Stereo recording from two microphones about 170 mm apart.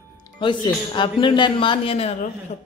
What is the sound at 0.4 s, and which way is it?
Speech, 30° left (ahead or behind).